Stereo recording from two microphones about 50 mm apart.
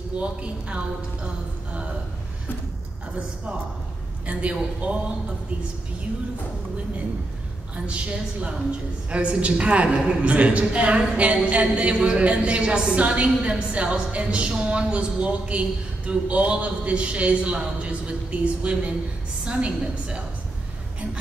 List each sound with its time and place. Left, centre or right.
0.2 s a woman's voice: right
4.3 s a woman's voice: right
7.7 s a woman's voice: right